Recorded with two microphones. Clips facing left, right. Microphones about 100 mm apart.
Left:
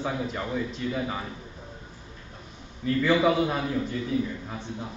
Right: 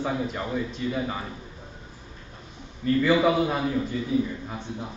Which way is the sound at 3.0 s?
5° right (ahead or behind).